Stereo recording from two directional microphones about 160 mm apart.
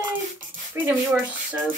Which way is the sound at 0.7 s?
10° right (ahead or behind).